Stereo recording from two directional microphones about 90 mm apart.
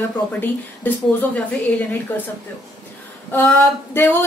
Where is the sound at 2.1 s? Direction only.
20° left (ahead or behind).